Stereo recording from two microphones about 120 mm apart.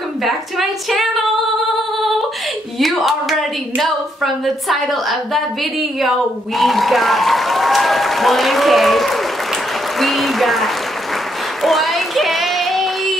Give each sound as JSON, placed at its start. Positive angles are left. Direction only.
{"t": 0.2, "sound": "a woman's voice", "side_deg": 0}
{"t": 2.8, "sound": "a woman's voice", "side_deg": 0}
{"t": 11.6, "sound": "a sound", "side_deg": 0}